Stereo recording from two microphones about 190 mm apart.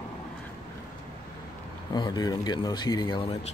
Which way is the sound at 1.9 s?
20° left (ahead or behind).